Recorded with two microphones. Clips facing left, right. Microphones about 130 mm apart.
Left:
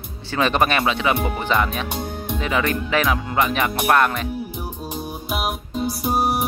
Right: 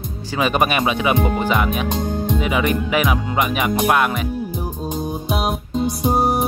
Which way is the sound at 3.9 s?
10° right (ahead or behind).